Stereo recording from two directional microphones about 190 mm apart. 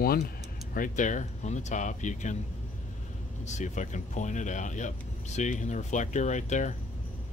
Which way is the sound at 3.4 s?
40° left (ahead or behind).